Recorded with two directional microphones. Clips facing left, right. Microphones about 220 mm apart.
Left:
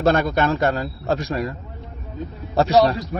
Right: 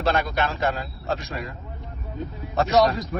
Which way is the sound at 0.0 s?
45° left (ahead or behind).